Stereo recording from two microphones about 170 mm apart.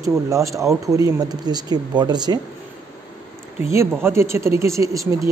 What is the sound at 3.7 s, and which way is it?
Speech, 15° right (ahead or behind).